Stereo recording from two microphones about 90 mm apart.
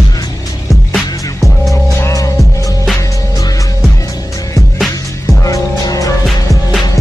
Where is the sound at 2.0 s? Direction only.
40° left (ahead or behind).